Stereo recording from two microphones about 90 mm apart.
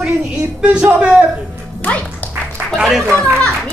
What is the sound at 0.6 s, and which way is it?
Speech, 10° right (ahead or behind).